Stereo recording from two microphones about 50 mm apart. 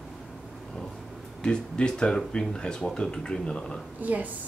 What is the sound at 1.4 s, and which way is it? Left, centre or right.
Speech, centre.